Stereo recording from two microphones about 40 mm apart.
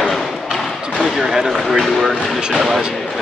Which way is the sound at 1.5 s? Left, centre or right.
Centre.